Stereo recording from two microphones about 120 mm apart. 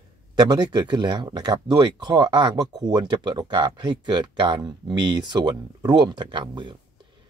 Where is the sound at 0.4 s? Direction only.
35° right (ahead or behind).